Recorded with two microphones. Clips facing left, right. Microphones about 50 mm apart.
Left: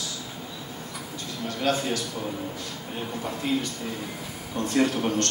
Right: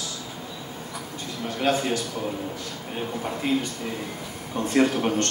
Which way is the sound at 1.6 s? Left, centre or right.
Right.